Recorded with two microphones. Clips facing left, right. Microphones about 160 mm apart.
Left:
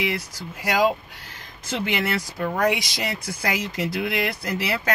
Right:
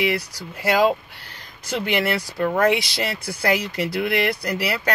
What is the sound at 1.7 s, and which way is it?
Speech, 20° left (ahead or behind).